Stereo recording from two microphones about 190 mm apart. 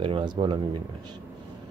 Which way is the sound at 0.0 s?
25° right (ahead or behind).